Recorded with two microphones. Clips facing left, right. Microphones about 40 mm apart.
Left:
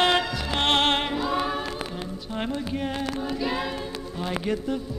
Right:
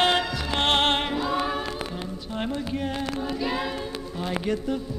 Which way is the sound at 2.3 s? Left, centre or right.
Centre.